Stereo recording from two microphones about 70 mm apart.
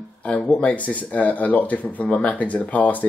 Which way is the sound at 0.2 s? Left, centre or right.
Centre.